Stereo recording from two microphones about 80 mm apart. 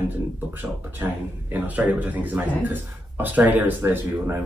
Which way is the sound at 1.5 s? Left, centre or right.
Centre.